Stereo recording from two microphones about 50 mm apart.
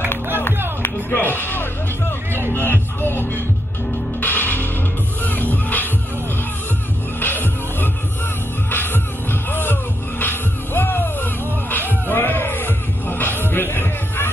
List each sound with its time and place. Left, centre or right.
0.8 s music: left
7.2 s music: left